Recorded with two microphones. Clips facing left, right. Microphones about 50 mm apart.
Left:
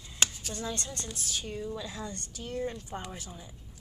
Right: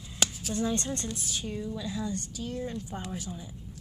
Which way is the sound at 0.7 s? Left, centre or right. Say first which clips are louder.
Right 7 dB; right.